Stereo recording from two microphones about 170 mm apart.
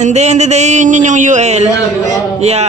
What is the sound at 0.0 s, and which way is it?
Speech, 40° right (ahead or behind).